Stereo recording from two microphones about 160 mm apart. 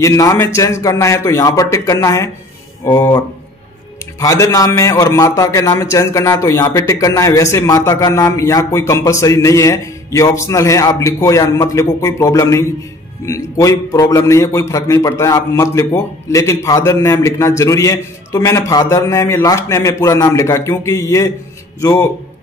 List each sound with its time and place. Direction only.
0.0 s a man's voice: 20° left (ahead or behind)
4.2 s a man's voice: 20° left (ahead or behind)